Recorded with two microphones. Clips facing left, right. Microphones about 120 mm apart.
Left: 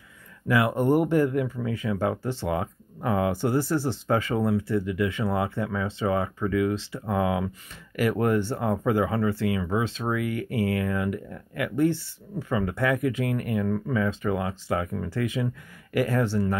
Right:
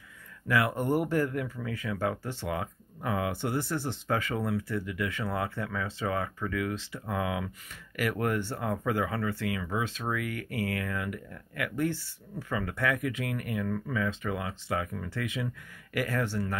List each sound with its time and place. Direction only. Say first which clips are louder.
0.5 s speech: left 5 dB; 20° left (ahead or behind)